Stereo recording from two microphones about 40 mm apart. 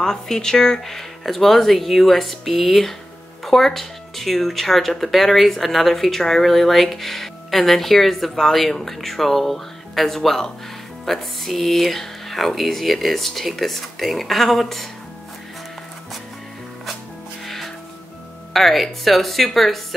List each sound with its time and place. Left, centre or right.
0.0 s speech: centre
0.8 s speech: centre
18.5 s speech: centre